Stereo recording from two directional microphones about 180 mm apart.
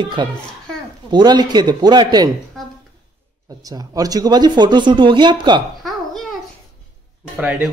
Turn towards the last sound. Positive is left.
turn(degrees=-5)  # may be behind; listen again after turning